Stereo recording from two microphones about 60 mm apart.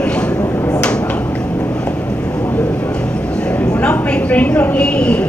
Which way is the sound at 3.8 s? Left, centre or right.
Left.